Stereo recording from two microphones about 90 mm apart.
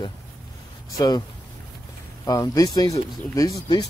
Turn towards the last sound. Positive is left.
turn(degrees=40)  # may be behind; listen again after turning